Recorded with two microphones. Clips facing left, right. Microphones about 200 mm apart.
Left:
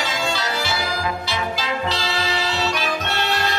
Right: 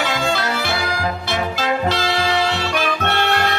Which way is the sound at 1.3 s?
55° right (ahead or behind).